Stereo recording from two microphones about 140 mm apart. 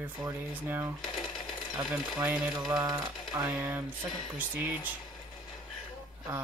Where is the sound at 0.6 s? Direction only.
15° right (ahead or behind).